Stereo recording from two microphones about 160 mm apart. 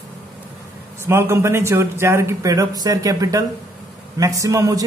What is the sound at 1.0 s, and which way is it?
A man's voice, 15° right (ahead or behind).